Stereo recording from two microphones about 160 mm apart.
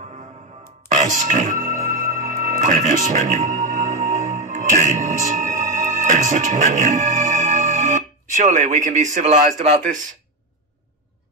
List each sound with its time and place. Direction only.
0.8 s music: 50° right (ahead or behind)